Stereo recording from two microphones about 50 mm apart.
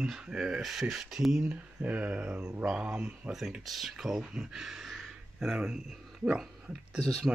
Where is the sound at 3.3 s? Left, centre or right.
Centre.